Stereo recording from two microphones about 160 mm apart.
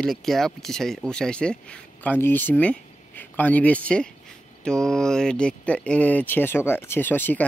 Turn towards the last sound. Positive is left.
turn(degrees=10)  # may be behind; listen again after turning